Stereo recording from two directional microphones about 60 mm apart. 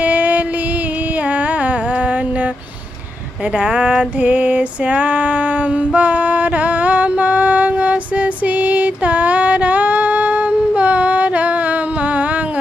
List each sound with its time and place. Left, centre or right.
0.0 s music: right
3.5 s female singing: centre